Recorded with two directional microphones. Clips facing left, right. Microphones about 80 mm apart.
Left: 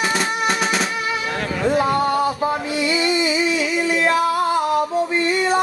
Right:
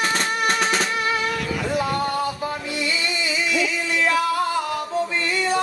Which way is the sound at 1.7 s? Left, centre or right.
Left.